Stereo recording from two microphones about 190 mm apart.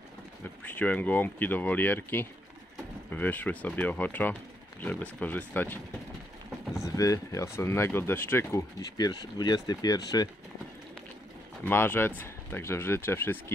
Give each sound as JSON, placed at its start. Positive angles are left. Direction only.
{"t": 0.7, "sound": "speech", "side_deg": 10}
{"t": 6.8, "sound": "speech", "side_deg": 15}
{"t": 11.6, "sound": "speech", "side_deg": 10}